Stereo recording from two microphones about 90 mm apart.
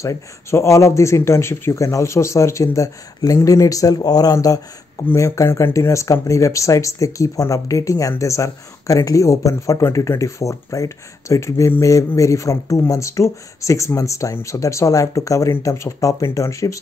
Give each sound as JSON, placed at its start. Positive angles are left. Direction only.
{"t": 0.0, "sound": "speech", "side_deg": 35}